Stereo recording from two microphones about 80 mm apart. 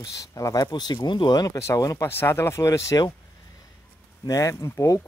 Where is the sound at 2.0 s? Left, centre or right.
Left.